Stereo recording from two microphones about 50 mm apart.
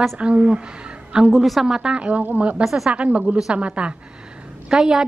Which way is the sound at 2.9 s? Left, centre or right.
Right.